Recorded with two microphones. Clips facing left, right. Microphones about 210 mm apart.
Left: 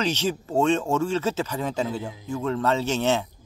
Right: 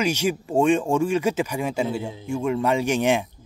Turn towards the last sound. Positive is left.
turn(degrees=-15)  # may be behind; listen again after turning